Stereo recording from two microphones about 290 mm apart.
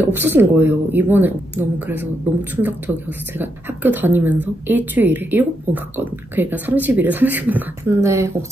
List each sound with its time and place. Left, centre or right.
0.0 s speech: centre